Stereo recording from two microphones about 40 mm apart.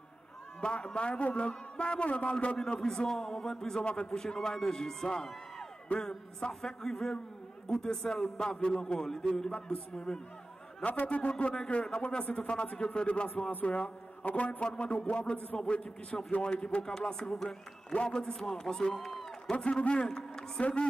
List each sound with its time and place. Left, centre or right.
0.6 s a man's voice: left
2.8 s a man's voice: centre; by 11.5 s left
11.5 s a man's voice: centre; by 14.6 s left
14.6 s a man's voice: left
18.9 s a sound: centre
19.5 s a man's voice: left